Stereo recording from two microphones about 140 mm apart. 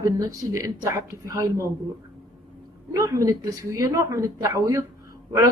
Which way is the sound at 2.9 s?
25° right (ahead or behind).